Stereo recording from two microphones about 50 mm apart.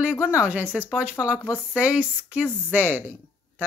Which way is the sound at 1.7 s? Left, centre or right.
Right.